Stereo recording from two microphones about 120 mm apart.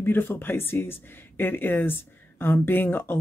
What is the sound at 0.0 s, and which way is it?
Speech, 20° left (ahead or behind).